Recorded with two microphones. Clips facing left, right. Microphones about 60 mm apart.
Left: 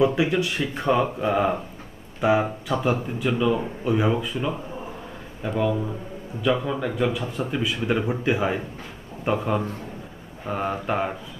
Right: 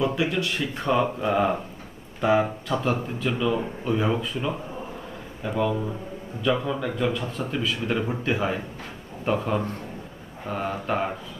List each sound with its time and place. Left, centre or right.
0.0 s speech: left